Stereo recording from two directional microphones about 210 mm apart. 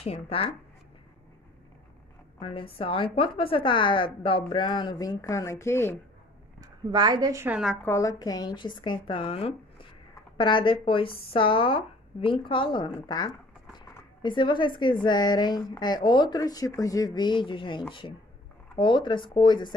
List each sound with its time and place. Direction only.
0.0 s a woman's voice: 30° left (ahead or behind)
2.4 s a woman's voice: 25° left (ahead or behind)
6.6 s a woman's voice: 20° right (ahead or behind)
7.8 s a woman's voice: 15° left (ahead or behind)